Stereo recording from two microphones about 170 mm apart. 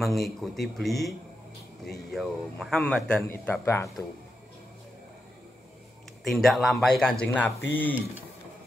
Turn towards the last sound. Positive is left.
turn(degrees=10)  # may be behind; listen again after turning